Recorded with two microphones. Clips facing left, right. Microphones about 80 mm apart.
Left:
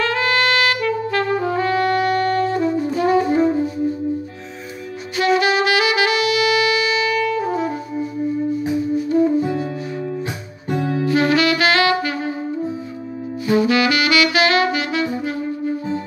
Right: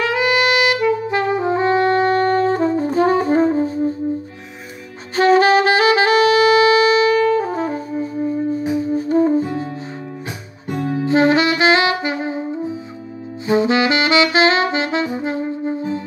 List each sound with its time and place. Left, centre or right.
0.0 s music: centre; by 3.8 s right
5.1 s saxophone: right
8.5 s music: right
11.1 s saxophone: right
13.5 s saxophone: right